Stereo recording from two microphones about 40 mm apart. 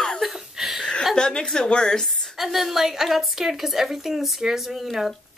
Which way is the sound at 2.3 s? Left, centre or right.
Centre.